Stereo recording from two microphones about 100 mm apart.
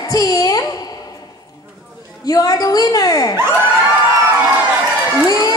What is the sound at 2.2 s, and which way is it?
A woman's voice, 35° left (ahead or behind).